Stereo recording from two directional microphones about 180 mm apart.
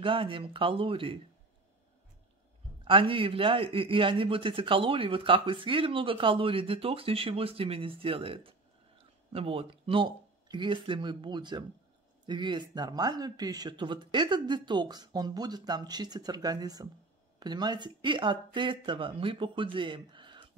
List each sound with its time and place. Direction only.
0.0 s a man's voice: 30° right (ahead or behind)
2.8 s a man's voice: 30° right (ahead or behind)